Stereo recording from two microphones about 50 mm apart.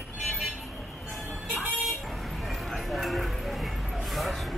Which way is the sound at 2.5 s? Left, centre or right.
Centre.